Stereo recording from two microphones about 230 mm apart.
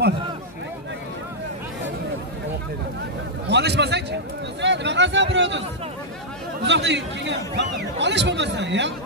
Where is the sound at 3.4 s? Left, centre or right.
Right.